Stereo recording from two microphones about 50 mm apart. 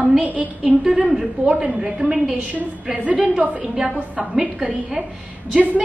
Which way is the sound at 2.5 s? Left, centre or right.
Right.